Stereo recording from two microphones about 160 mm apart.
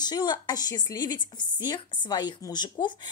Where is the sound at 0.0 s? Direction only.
25° left (ahead or behind).